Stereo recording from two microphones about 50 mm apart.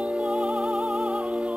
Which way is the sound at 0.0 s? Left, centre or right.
Right.